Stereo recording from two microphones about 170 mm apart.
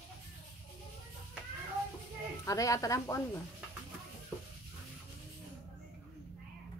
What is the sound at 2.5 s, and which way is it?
Speech, 20° left (ahead or behind).